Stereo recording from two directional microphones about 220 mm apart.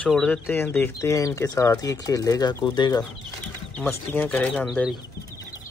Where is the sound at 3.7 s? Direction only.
5° left (ahead or behind).